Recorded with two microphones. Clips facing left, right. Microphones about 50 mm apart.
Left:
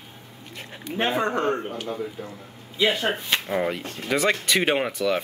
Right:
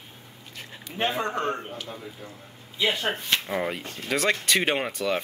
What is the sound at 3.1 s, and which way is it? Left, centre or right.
Speech, centre.